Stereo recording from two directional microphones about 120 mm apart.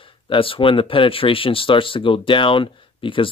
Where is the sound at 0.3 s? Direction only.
50° left (ahead or behind).